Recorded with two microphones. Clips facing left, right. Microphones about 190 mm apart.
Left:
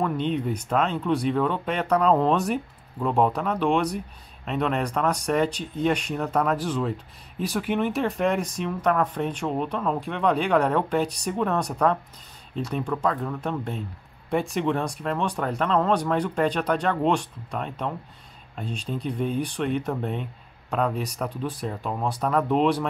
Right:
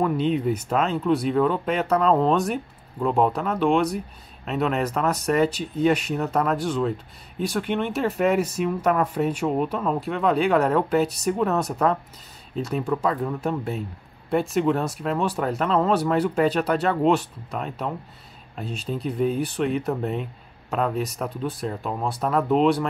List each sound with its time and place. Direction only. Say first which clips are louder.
0.0 s speech: right 3 dB; 5° right (ahead or behind)